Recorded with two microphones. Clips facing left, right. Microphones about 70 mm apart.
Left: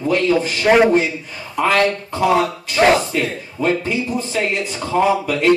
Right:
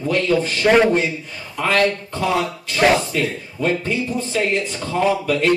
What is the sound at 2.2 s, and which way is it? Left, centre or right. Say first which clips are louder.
Speech: left 5 dB; left.